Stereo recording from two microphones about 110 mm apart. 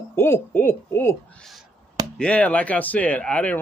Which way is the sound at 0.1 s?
20° left (ahead or behind).